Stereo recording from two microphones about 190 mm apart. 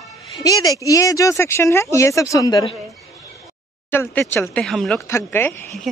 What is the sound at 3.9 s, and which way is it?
A woman's voice, 10° left (ahead or behind).